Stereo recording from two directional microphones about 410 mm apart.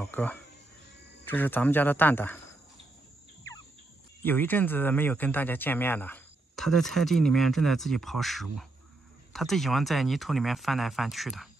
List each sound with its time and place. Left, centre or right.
0.0 s speech: centre
4.2 s speech: centre